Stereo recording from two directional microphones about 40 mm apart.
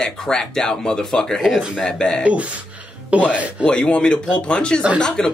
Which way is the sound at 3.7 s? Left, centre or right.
Left.